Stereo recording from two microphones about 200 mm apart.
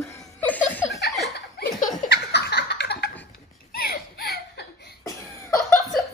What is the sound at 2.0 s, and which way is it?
Laughter, 55° left (ahead or behind).